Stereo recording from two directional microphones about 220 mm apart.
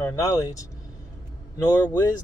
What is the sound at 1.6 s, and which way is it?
Speech, 20° left (ahead or behind).